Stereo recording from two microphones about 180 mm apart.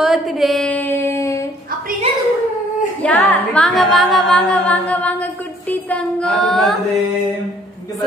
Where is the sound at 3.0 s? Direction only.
10° left (ahead or behind).